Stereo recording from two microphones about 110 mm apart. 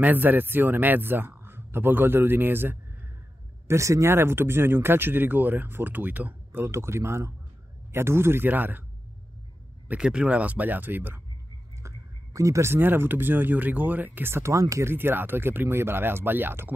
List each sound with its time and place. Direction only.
0.0 s a man's voice: 15° right (ahead or behind)
9.8 s a man's voice: 10° right (ahead or behind)
12.4 s speech: 25° right (ahead or behind)